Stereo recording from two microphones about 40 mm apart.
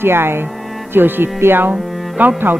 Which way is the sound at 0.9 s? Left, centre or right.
Right.